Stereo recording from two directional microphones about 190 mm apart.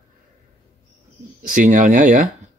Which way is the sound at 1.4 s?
45° right (ahead or behind).